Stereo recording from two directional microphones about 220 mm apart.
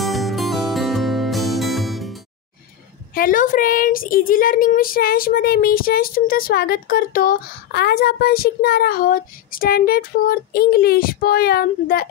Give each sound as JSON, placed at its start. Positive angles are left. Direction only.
{"t": 0.0, "sound": "music", "side_deg": 0}
{"t": 3.2, "sound": "speech", "side_deg": 40}